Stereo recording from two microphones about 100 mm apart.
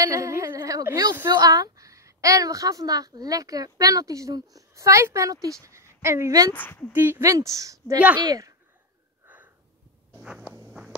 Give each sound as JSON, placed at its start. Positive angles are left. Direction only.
{"t": 0.0, "sound": "a sound", "side_deg": -35}
{"t": 1.3, "sound": "a woman's voice", "side_deg": -40}
{"t": 6.5, "sound": "speech", "side_deg": 15}
{"t": 6.9, "sound": "a woman's voice", "side_deg": -20}
{"t": 9.2, "sound": "sniff", "side_deg": -15}
{"t": 10.2, "sound": "a sound", "side_deg": -5}